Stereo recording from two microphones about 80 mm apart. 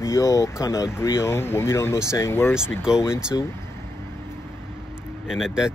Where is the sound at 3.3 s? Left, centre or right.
Left.